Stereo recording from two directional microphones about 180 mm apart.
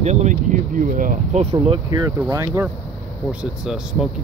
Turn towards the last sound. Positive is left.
turn(degrees=-5)  # may be behind; listen again after turning